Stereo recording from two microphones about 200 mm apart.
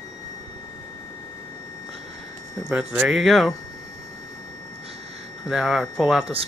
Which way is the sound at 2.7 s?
5° right (ahead or behind).